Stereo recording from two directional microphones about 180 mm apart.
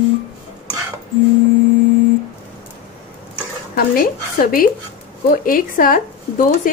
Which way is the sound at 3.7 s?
55° left (ahead or behind).